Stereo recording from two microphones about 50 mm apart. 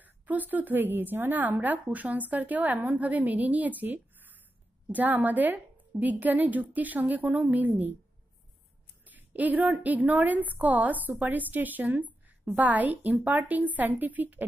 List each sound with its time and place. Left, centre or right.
0.0 s a woman's voice: right
1.3 s a woman's voice: right
9.0 s a woman's voice: right